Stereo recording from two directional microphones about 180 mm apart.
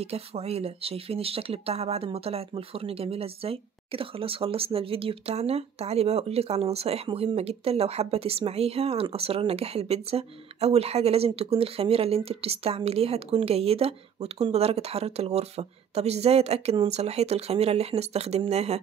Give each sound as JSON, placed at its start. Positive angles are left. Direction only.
{"t": 0.0, "sound": "speech", "side_deg": -35}